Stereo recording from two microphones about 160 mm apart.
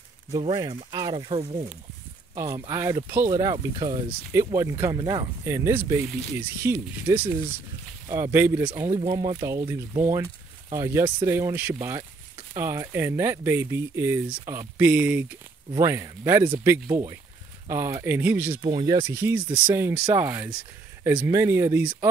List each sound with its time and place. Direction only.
0.3 s speech: 35° right (ahead or behind)
2.3 s speech: 20° right (ahead or behind)
18.6 s speech: 30° right (ahead or behind)
19.0 s speech: 10° right (ahead or behind)
19.4 s speech: 30° right (ahead or behind)
19.7 s speech: 10° right (ahead or behind)